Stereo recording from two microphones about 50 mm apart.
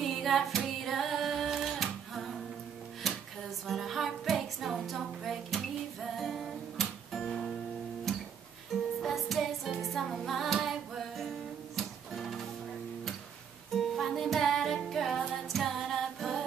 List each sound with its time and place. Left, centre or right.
0.0 s child singing: centre
0.8 s singing: centre
3.6 s music: centre
8.1 s guitar: centre
8.7 s music: centre
13.7 s music: centre